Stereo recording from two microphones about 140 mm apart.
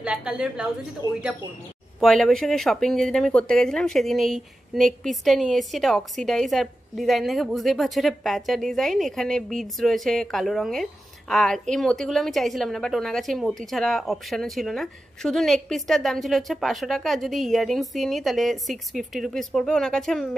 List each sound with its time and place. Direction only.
0.0 s a woman's voice: 10° right (ahead or behind)
1.0 s speech: 25° right (ahead or behind)
2.0 s speech: centre (ahead or behind)